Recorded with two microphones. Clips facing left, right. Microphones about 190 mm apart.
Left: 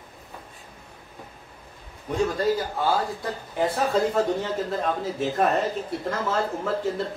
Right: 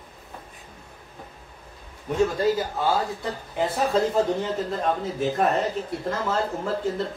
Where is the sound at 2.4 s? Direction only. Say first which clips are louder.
Right 1 dB; centre (ahead or behind).